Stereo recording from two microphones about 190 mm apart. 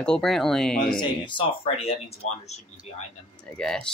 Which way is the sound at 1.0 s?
25° left (ahead or behind).